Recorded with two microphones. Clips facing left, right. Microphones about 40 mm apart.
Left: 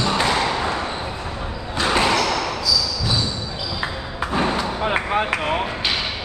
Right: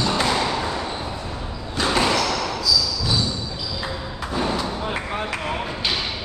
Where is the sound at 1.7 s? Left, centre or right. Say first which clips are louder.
Left 2 dB; centre.